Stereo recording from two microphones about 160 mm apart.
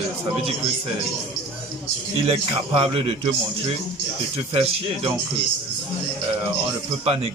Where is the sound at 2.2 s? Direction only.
35° right (ahead or behind).